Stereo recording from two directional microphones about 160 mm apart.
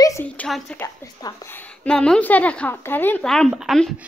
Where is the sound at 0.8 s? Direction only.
20° left (ahead or behind).